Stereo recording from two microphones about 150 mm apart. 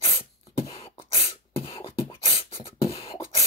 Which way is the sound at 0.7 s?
40° left (ahead or behind).